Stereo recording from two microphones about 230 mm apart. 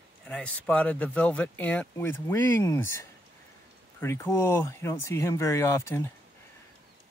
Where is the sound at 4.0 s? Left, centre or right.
Centre.